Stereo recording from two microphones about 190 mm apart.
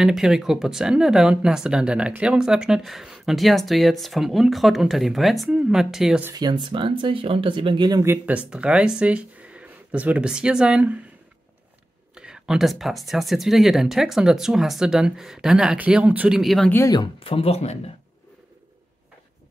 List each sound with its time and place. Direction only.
0.0 s speech: centre (ahead or behind)
6.3 s speech: 25° right (ahead or behind); by 11.0 s 5° right (ahead or behind)
12.2 s speech: 5° right (ahead or behind)
16.7 s speech: 20° left (ahead or behind)